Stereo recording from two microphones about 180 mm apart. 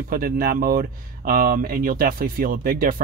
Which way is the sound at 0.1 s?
55° right (ahead or behind).